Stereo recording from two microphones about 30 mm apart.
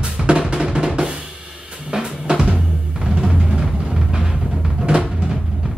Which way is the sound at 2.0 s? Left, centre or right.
Right.